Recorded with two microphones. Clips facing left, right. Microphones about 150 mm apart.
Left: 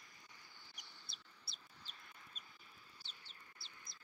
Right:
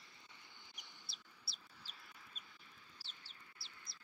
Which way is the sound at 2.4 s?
45° left (ahead or behind).